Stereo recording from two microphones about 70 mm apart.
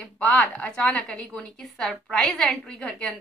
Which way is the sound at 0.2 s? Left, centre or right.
Centre.